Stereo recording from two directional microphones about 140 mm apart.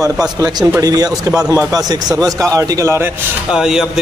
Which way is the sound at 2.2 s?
5° left (ahead or behind).